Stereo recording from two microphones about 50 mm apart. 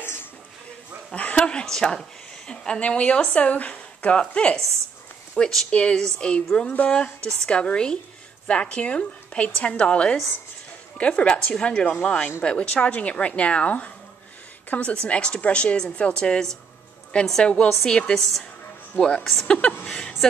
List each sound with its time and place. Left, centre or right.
0.0 s a sound: left
1.1 s a woman's voice: left
5.4 s a woman's voice: centre
5.7 s a woman's voice: left
18.1 s a woman's voice: centre
18.9 s a woman's voice: centre
19.9 s a sound: centre